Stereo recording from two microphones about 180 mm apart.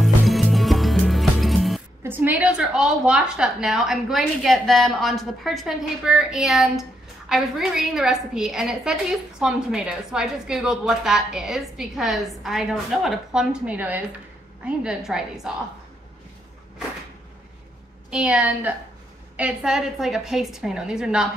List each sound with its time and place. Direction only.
0.0 s music: centre (ahead or behind)
2.0 s a woman's voice: 10° right (ahead or behind)
18.1 s a woman's voice: 5° right (ahead or behind)